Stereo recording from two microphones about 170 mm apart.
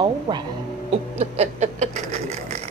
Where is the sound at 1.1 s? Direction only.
40° right (ahead or behind).